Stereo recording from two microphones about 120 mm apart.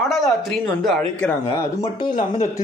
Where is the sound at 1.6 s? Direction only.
35° left (ahead or behind).